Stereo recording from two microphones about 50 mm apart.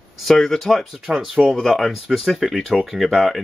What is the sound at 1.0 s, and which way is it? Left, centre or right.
Speech, centre.